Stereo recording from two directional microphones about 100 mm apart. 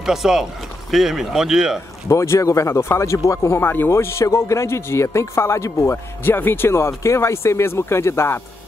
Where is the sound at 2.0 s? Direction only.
30° left (ahead or behind).